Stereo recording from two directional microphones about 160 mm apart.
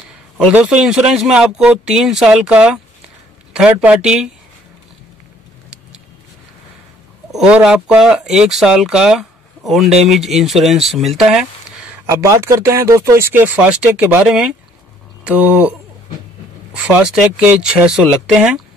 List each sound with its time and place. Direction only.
0.5 s speech: 10° right (ahead or behind)
7.2 s speech: 5° right (ahead or behind)
12.1 s speech: 20° right (ahead or behind)
16.8 s speech: 5° right (ahead or behind)